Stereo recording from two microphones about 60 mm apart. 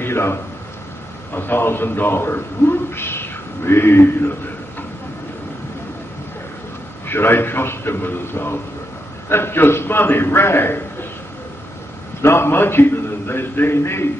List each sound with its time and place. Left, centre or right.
0.0 s a man's voice: left
7.1 s a man's voice: left
12.2 s a man's voice: left